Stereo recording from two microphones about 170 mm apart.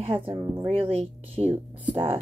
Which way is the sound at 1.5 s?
15° right (ahead or behind).